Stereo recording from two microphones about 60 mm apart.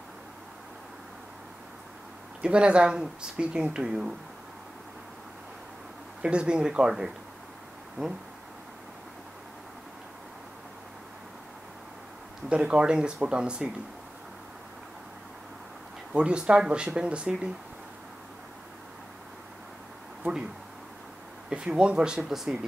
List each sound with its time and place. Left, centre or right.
2.4 s speech: centre
6.2 s speech: centre
12.4 s speech: centre
16.1 s speech: centre
21.5 s speech: centre